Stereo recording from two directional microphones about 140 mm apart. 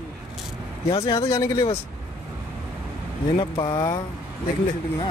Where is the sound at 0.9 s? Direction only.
35° left (ahead or behind).